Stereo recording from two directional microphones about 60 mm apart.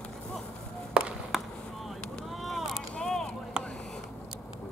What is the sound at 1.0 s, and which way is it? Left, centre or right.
Chop, centre.